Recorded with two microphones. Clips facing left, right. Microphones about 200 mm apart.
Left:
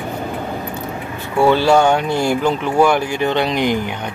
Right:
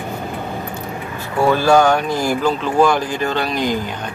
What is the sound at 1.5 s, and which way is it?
Speech, 25° left (ahead or behind).